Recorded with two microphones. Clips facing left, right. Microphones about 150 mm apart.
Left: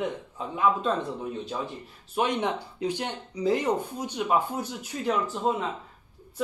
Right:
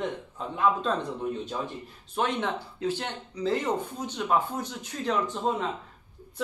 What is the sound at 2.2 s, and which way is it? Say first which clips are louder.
Speech: left 2 dB; 15° left (ahead or behind).